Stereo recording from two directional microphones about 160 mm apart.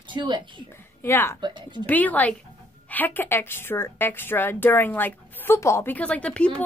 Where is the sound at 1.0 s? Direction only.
15° left (ahead or behind).